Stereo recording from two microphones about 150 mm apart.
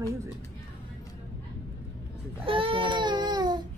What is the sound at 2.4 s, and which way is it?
Baby cry, 35° right (ahead or behind).